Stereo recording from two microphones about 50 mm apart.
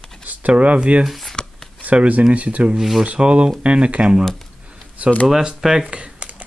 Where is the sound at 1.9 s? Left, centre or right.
Right.